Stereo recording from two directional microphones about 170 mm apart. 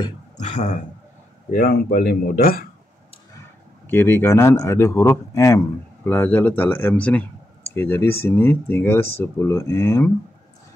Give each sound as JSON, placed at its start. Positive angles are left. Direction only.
{"t": 0.4, "sound": "speech", "side_deg": 45}
{"t": 1.5, "sound": "speech", "side_deg": 65}
{"t": 3.8, "sound": "speech", "side_deg": 10}